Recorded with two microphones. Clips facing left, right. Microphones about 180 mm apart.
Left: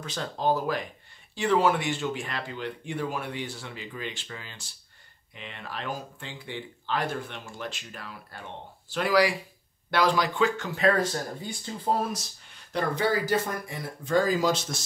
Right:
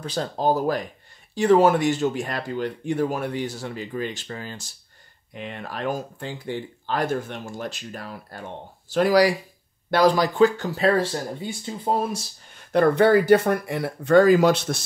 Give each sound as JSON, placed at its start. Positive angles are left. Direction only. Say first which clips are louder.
{"t": 0.0, "sound": "speech", "louder": "right 5 dB", "side_deg": -35}
{"t": 12.5, "sound": "speech", "louder": "right 11 dB", "side_deg": -60}